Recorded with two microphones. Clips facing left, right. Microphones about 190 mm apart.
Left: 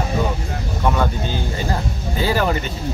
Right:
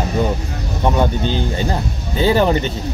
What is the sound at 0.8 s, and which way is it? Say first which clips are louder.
Speech: right 3 dB; 20° right (ahead or behind).